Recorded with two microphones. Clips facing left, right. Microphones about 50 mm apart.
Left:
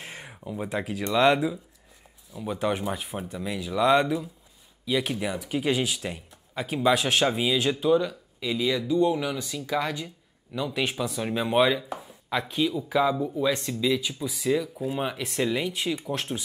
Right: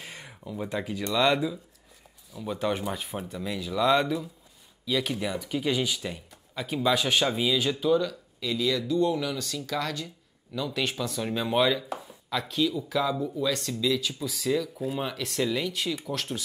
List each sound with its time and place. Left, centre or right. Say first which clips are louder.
0.0 s a sound: left 2 dB; left
0.3 s speech: left 2 dB; centre
5.5 s speech: left 2 dB; left